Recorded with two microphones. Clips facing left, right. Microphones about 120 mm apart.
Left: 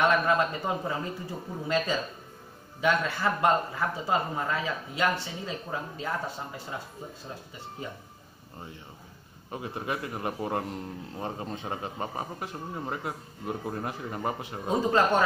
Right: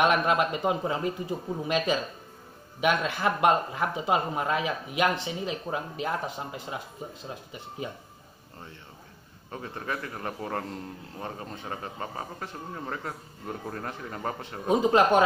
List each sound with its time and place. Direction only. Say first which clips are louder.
0.0 s speech: right 1 dB; 15° right (ahead or behind)
9.5 s a man's voice: left 1 dB; 15° left (ahead or behind)
14.7 s speech: right 3 dB; 15° right (ahead or behind)